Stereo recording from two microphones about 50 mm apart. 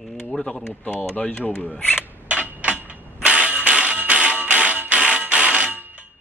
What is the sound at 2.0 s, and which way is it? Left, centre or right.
Mechanisms, right.